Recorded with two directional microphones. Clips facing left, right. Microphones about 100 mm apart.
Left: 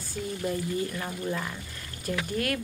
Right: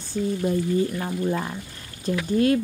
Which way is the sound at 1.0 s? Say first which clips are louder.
Right 6 dB; 30° right (ahead or behind).